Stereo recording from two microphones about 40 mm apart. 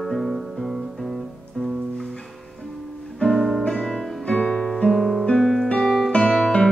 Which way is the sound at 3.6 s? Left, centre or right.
Centre.